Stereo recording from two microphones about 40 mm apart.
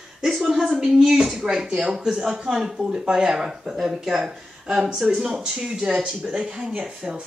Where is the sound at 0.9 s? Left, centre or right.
Centre.